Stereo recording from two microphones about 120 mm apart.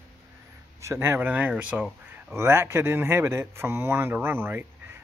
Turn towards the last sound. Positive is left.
turn(degrees=-15)  # may be behind; listen again after turning